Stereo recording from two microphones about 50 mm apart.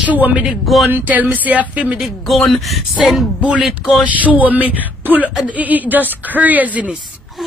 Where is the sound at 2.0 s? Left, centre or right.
Centre.